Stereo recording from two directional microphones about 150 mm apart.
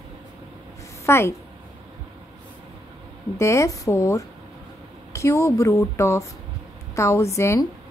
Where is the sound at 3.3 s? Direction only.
20° left (ahead or behind).